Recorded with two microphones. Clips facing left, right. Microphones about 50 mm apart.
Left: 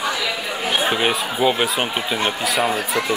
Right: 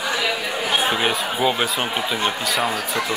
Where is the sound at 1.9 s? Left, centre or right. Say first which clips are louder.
Left 1 dB; centre.